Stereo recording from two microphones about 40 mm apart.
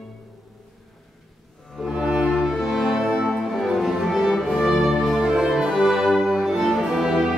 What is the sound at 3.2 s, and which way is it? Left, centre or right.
Music, centre.